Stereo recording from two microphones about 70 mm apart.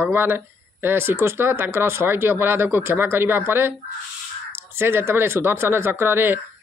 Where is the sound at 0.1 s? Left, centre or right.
Right.